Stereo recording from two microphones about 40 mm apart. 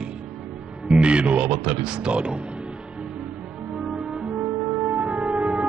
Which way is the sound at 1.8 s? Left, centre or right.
Right.